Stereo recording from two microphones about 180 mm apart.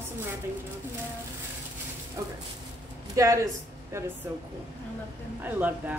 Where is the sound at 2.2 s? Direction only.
20° right (ahead or behind).